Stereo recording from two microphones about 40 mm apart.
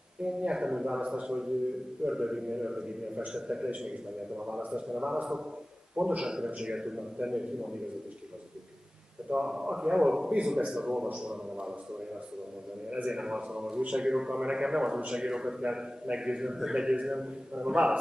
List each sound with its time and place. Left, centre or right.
0.2 s a man's voice: right
9.3 s a man's voice: centre